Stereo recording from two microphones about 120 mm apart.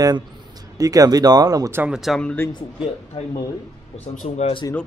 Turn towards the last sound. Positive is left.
turn(degrees=70)  # may be behind; listen again after turning